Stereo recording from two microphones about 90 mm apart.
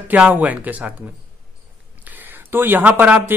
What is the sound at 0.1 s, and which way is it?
A man's voice, 15° right (ahead or behind).